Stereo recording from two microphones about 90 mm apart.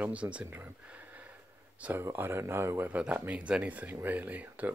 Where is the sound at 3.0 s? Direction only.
15° right (ahead or behind).